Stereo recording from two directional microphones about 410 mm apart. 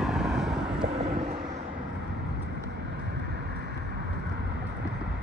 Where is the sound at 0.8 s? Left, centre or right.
Centre.